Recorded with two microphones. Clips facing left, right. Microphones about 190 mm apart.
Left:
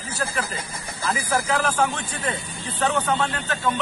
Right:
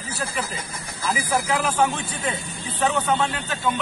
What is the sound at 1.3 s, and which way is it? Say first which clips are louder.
A man's voice: left 1 dB; 5° right (ahead or behind).